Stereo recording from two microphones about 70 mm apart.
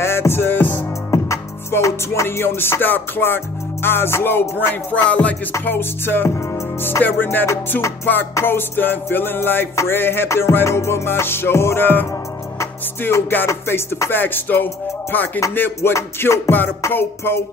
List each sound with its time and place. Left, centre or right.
0.0 s music: left
1.7 s music: left
5.5 s music: left